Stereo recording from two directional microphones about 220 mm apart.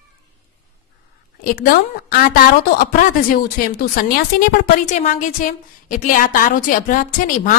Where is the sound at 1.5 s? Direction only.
40° left (ahead or behind).